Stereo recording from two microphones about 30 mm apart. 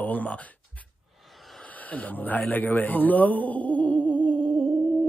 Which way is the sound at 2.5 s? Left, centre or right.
Left.